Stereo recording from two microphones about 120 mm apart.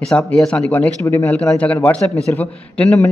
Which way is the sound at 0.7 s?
20° left (ahead or behind).